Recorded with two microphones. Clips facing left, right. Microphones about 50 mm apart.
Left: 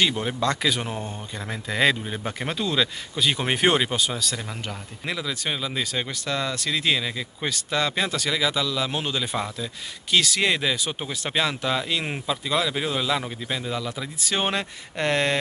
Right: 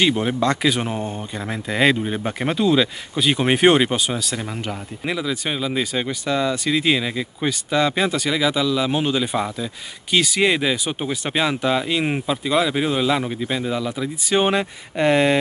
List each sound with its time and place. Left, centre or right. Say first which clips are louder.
0.0 s speech: right 5 dB; centre